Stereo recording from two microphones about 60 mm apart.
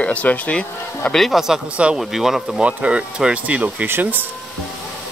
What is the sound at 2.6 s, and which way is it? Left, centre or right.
Speech, centre.